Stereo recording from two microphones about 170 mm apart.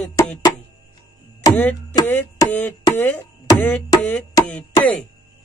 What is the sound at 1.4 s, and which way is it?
Music, 20° left (ahead or behind).